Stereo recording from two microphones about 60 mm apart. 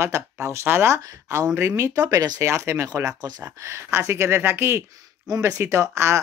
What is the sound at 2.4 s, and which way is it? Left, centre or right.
Speech, right.